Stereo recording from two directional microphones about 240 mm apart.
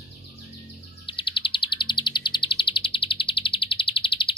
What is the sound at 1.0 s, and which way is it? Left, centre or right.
Bird, left.